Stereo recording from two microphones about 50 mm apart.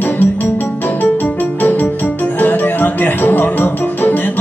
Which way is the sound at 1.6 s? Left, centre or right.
Left.